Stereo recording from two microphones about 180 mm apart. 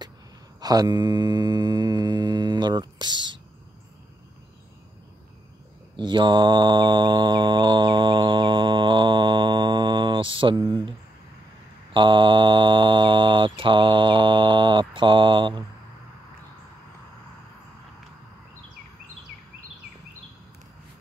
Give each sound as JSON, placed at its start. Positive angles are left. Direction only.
{"t": 0.6, "sound": "mantra", "side_deg": -20}
{"t": 5.9, "sound": "mantra", "side_deg": -25}
{"t": 11.9, "sound": "mantra", "side_deg": -25}